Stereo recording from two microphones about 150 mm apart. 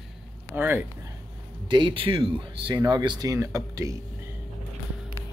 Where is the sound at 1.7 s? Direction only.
30° right (ahead or behind).